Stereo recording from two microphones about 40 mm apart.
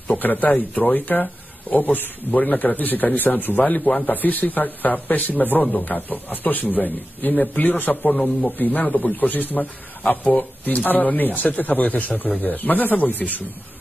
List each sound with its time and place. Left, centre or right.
0.1 s a man's voice: left
4.1 s a man's voice: left
8.2 s a man's voice: centre
8.5 s a man's voice: left